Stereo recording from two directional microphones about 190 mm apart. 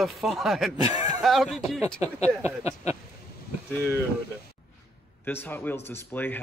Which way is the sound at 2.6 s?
15° right (ahead or behind).